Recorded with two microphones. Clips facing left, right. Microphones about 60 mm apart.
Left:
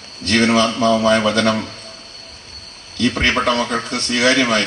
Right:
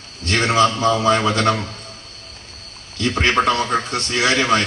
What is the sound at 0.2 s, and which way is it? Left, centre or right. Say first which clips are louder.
A man's voice: left 1 dB; right.